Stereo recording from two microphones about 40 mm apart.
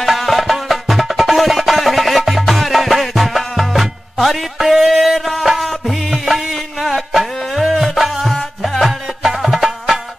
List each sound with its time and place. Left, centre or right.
0.0 s music: centre